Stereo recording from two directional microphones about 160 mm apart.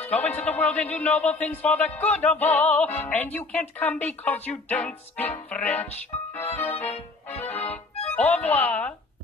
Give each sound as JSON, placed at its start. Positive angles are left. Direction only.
{"t": 0.0, "sound": "a man's voice", "side_deg": 10}
{"t": 7.2, "sound": "music", "side_deg": 10}
{"t": 7.9, "sound": "music", "side_deg": 40}
{"t": 8.2, "sound": "speech", "side_deg": 10}